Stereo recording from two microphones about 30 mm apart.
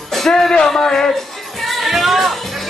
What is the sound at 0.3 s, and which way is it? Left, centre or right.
Speech, left.